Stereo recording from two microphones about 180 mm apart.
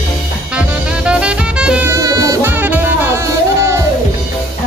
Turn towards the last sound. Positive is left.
turn(degrees=-15)  # may be behind; listen again after turning